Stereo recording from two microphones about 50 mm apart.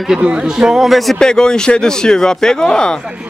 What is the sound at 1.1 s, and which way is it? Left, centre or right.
Speech, centre.